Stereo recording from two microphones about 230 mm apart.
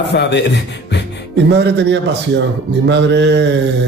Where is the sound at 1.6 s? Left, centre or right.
Right.